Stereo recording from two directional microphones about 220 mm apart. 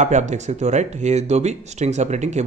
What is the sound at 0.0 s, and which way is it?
A man's voice, 30° right (ahead or behind).